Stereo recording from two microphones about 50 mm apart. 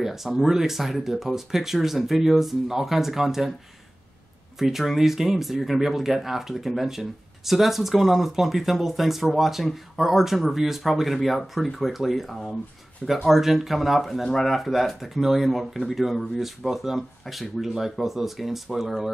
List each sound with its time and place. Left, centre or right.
0.0 s speech: centre
4.6 s speech: centre